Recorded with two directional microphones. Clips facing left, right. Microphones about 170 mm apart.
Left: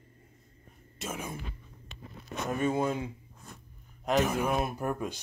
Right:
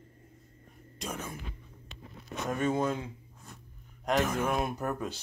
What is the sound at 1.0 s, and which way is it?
Speech, 5° left (ahead or behind).